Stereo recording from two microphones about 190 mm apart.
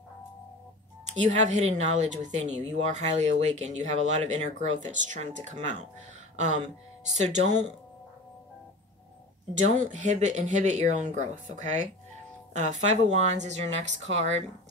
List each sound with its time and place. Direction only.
1.2 s a woman's voice: 40° right (ahead or behind)
9.5 s a woman's voice: 40° right (ahead or behind)